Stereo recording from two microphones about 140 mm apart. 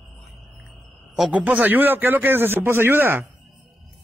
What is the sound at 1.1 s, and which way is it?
A man's voice, 5° right (ahead or behind).